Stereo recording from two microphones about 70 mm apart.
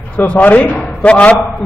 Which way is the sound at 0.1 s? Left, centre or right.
Centre.